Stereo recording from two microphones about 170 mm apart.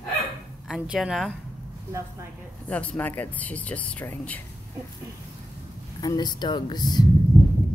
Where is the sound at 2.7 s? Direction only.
10° left (ahead or behind).